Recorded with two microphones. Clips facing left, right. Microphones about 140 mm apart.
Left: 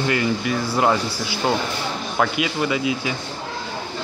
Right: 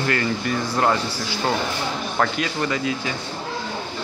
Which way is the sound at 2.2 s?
10° left (ahead or behind).